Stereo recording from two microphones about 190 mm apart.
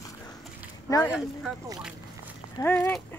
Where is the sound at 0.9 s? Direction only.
20° left (ahead or behind).